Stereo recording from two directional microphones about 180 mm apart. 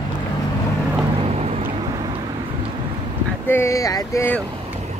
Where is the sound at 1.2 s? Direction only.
35° right (ahead or behind).